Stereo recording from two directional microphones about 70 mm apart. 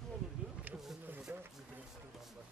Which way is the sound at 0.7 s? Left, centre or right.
Right.